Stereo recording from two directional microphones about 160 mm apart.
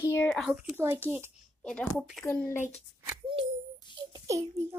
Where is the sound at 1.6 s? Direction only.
5° left (ahead or behind).